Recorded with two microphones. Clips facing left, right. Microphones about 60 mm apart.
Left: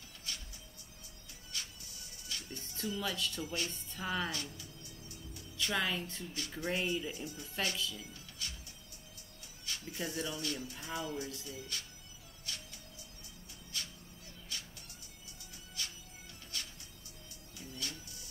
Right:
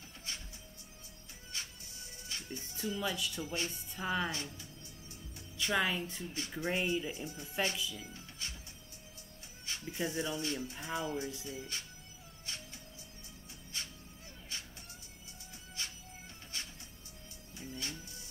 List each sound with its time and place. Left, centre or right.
0.3 s music: right
1.5 s music: right
3.2 s a woman's voice: centre
3.4 s speech: right
3.9 s a woman's voice: centre
4.3 s music: right
6.5 s speech: right
7.7 s a woman's voice: centre
8.0 s music: right
9.7 s speech: right
12.5 s music: right
13.7 s music: right
14.5 s vehicle: right
15.8 s music: right